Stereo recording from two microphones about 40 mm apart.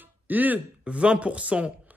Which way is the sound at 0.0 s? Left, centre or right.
Right.